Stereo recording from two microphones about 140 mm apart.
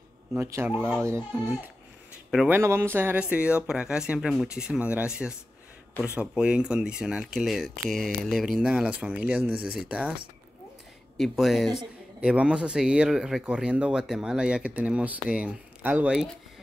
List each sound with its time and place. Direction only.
0.3 s a man's voice: 15° right (ahead or behind)
2.3 s a man's voice: 15° right (ahead or behind)